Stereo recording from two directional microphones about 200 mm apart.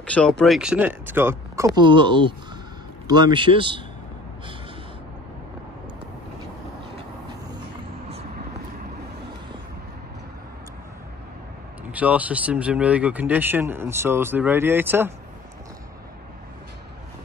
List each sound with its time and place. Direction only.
0.0 s speech: 5° left (ahead or behind); by 3.8 s 25° right (ahead or behind)
11.9 s speech: 5° right (ahead or behind)